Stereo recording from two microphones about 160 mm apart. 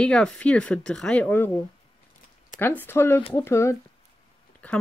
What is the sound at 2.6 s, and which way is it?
Speech, 10° left (ahead or behind).